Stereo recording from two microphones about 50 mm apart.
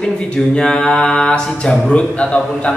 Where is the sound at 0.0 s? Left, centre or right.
Centre.